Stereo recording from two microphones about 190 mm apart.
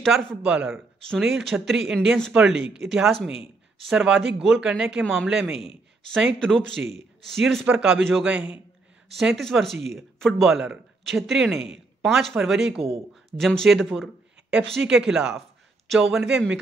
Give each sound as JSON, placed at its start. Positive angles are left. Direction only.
{"t": 0.0, "sound": "speech", "side_deg": 0}
{"t": 12.7, "sound": "speech", "side_deg": -30}
{"t": 13.1, "sound": "speech", "side_deg": 0}